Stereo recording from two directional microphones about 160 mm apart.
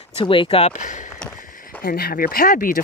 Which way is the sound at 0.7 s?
50° left (ahead or behind).